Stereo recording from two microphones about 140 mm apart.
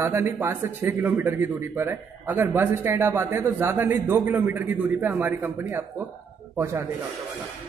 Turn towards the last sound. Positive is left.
turn(degrees=-20)  # may be behind; listen again after turning